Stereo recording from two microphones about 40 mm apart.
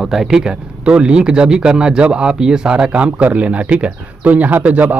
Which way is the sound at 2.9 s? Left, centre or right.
Right.